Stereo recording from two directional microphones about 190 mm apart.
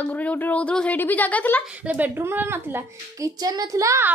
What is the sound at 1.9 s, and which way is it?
A woman's voice, 10° right (ahead or behind).